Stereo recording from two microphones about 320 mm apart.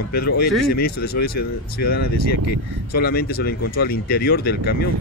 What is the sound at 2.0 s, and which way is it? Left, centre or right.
Speech, left.